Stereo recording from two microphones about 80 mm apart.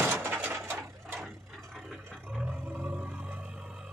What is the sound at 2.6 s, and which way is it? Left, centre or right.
Roar, centre.